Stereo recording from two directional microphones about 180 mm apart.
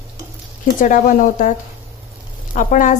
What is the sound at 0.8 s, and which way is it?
Speech, 45° left (ahead or behind).